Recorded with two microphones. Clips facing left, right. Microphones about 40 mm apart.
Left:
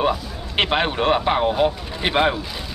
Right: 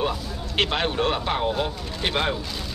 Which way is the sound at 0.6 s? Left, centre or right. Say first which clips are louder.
Left 3 dB; left.